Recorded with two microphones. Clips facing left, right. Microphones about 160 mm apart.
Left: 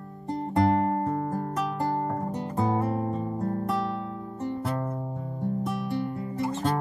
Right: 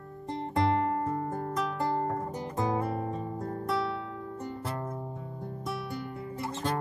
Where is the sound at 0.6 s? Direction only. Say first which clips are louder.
Left 4 dB; 45° left (ahead or behind).